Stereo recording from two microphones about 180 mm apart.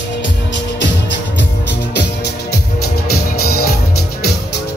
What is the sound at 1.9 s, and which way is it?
Music, 65° left (ahead or behind).